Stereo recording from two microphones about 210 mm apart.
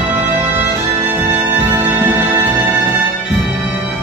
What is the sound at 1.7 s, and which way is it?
Music, 10° right (ahead or behind).